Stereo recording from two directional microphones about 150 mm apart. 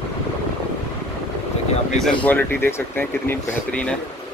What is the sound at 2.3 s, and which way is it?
Speech, 15° left (ahead or behind).